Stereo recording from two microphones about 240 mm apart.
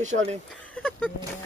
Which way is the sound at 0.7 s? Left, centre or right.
Centre.